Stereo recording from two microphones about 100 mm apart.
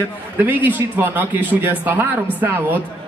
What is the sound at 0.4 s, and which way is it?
A man's voice, 20° right (ahead or behind).